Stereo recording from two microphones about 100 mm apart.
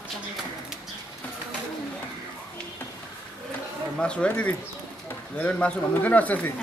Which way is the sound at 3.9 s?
10° left (ahead or behind).